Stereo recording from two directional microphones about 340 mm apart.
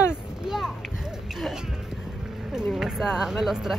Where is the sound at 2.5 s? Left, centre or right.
Centre.